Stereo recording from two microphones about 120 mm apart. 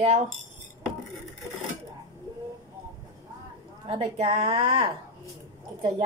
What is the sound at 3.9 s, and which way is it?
Speech, 60° right (ahead or behind).